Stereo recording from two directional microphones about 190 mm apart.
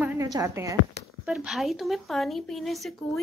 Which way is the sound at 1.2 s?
5° right (ahead or behind).